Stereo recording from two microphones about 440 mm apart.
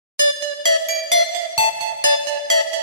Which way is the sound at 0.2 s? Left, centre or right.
Right.